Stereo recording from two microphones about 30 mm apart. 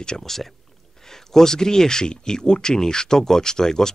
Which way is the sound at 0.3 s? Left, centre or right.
Centre.